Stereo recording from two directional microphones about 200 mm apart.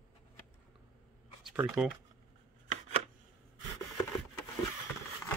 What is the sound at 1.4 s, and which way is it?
Speech, 5° right (ahead or behind).